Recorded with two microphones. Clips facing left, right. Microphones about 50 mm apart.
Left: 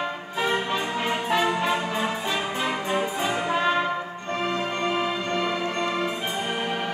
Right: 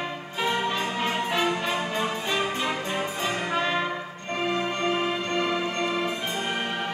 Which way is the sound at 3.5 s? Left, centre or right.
Centre.